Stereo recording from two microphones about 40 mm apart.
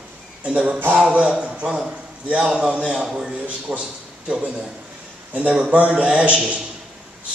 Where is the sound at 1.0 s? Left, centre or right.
Right.